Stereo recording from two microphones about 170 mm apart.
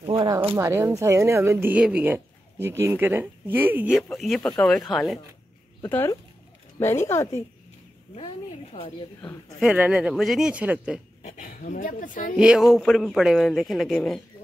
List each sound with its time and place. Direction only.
0.2 s speech: 25° right (ahead or behind)
0.6 s speech: 15° right (ahead or behind); by 5.2 s centre (ahead or behind)
5.9 s speech: 15° left (ahead or behind)
9.6 s speech: 10° right (ahead or behind)
11.2 s speech: 50° left (ahead or behind)
12.4 s speech: 5° right (ahead or behind)